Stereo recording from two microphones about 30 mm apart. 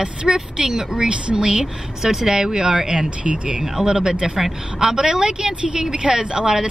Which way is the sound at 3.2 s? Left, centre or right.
Right.